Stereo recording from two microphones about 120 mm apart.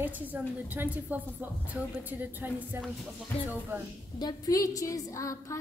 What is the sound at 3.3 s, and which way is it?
Speech, 15° left (ahead or behind).